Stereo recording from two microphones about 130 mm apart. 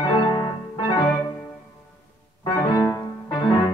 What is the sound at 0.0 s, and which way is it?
Music, 35° left (ahead or behind).